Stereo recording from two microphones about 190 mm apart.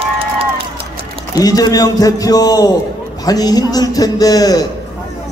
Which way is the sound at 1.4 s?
20° left (ahead or behind).